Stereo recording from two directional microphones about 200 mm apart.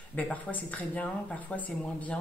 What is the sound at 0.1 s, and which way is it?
Speech, 10° left (ahead or behind).